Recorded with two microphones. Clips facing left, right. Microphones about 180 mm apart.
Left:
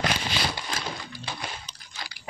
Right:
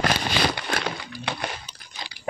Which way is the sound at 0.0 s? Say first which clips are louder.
Right 5 dB; 65° right (ahead or behind).